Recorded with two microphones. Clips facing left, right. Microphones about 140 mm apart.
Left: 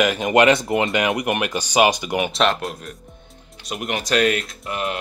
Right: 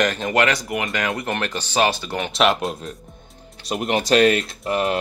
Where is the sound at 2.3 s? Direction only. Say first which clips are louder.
Right 4 dB; 5° right (ahead or behind).